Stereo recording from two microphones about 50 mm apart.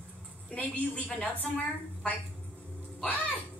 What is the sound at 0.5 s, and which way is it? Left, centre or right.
Speech, left.